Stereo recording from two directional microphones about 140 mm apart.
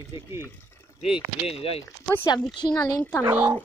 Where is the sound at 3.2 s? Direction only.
15° right (ahead or behind).